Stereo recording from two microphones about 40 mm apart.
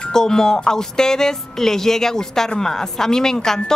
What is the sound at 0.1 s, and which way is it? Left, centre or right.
Speech, centre.